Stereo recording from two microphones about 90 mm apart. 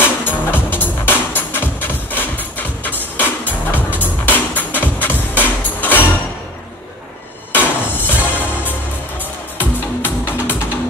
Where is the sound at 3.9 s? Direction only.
20° left (ahead or behind).